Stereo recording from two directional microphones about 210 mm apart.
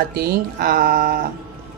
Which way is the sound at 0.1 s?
50° right (ahead or behind).